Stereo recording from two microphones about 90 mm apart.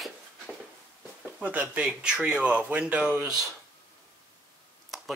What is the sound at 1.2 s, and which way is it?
Speech, 15° right (ahead or behind).